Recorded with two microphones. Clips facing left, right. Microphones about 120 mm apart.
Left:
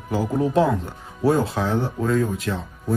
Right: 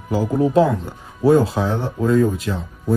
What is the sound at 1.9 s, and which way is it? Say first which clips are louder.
Speech: right 8 dB; 15° right (ahead or behind).